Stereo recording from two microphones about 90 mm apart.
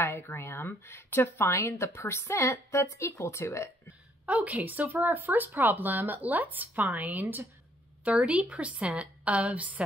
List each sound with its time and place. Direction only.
0.0 s speech: 25° left (ahead or behind)
4.3 s a woman's voice: 15° right (ahead or behind)